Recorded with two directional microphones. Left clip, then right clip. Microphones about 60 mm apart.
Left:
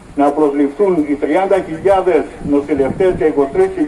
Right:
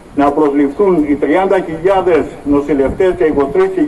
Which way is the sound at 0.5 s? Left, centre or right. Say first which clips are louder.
Right 2 dB; left.